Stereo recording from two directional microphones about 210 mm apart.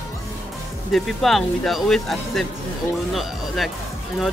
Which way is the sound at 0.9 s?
Centre (ahead or behind).